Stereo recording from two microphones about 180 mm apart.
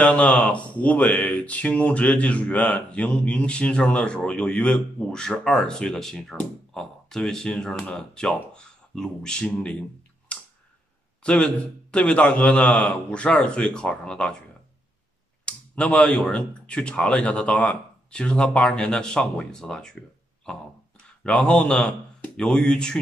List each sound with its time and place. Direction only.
0.0 s speech: 10° left (ahead or behind)
10.3 s a sound: 5° left (ahead or behind)
11.2 s a man's voice: 5° left (ahead or behind)
15.4 s speech: 5° left (ahead or behind)